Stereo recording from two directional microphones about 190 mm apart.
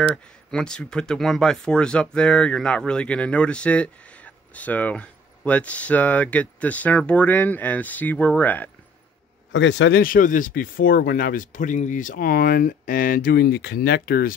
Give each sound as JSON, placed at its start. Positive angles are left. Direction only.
{"t": 0.1, "sound": "speech", "side_deg": 5}
{"t": 9.5, "sound": "a man's voice", "side_deg": 75}
{"t": 10.0, "sound": "speech", "side_deg": 45}